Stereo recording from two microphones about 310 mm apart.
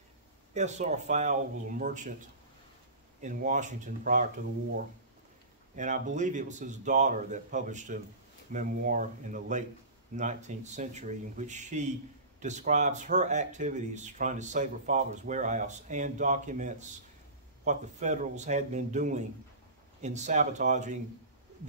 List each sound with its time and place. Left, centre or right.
0.6 s speech: right
3.2 s speech: right
5.8 s speech: right